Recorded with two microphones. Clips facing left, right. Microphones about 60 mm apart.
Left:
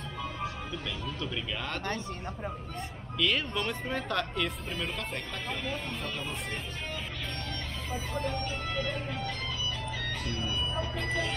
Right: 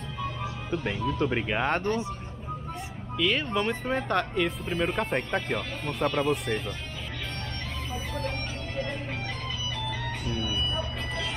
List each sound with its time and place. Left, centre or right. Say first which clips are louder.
0.7 s speech: right 8 dB; right
3.2 s speech: right 3 dB; centre
3.5 s speech: right 5 dB; right
4.7 s speech: right 8 dB; right